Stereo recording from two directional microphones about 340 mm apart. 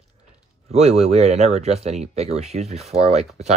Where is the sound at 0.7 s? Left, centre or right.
Centre.